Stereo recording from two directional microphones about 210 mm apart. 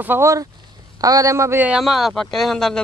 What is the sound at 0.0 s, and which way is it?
A man's voice, 10° right (ahead or behind).